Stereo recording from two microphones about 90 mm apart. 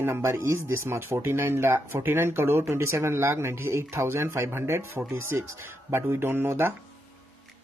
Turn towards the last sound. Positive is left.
turn(degrees=-25)  # may be behind; listen again after turning